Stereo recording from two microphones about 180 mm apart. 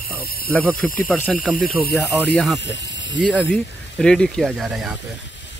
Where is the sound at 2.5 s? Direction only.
85° left.